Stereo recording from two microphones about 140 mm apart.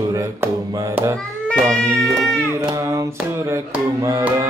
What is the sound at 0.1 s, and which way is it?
Music, 25° right (ahead or behind).